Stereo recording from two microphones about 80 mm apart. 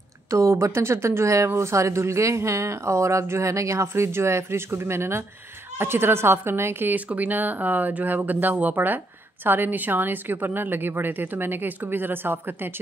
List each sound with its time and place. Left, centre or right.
0.3 s speech: right